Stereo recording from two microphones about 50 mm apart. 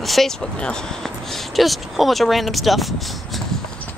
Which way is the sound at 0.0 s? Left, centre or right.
Centre.